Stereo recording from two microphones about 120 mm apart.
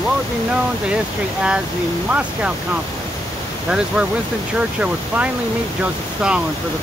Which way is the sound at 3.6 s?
5° right (ahead or behind).